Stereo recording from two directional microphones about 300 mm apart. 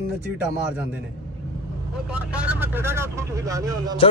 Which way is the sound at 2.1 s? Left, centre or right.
Centre.